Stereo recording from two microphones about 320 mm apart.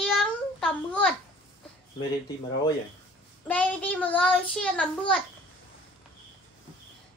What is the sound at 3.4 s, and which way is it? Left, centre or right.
Child singing, centre.